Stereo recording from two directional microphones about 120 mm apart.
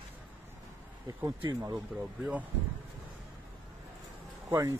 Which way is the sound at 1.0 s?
35° right (ahead or behind).